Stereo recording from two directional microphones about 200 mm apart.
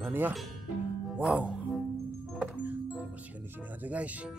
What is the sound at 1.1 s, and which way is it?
Music, 5° right (ahead or behind).